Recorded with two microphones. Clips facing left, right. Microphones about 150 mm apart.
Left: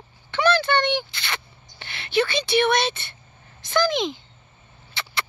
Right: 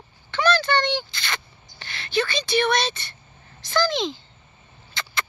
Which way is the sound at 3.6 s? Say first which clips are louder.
Left 1 dB; 15° left (ahead or behind).